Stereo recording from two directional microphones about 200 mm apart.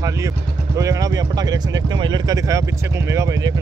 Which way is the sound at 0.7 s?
15° right (ahead or behind).